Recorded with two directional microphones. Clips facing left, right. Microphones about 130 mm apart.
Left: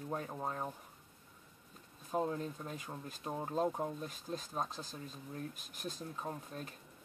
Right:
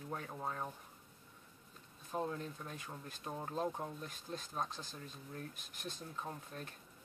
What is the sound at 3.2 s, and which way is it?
Speech, 20° left (ahead or behind).